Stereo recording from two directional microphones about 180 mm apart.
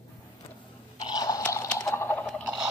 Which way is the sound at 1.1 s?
20° left (ahead or behind).